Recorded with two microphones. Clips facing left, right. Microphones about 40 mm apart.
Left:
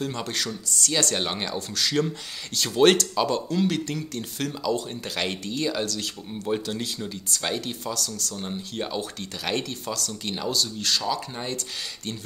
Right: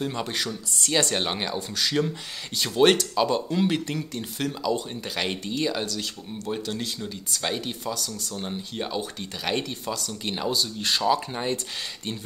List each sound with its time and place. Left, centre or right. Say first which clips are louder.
0.0 s speech: right 1 dB; centre
0.7 s speech: left 1 dB; right
0.9 s speech: right 2 dB; centre